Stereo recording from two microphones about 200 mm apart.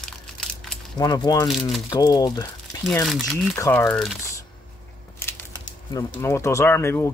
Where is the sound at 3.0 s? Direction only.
Centre (ahead or behind).